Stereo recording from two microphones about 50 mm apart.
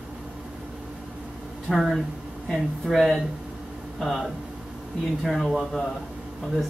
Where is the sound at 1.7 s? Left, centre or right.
Centre.